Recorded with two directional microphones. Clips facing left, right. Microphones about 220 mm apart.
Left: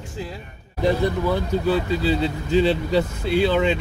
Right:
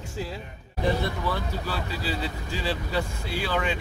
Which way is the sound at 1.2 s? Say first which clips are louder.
Left 9 dB; 20° left (ahead or behind).